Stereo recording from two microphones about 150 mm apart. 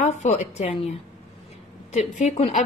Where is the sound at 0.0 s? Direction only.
45° left (ahead or behind).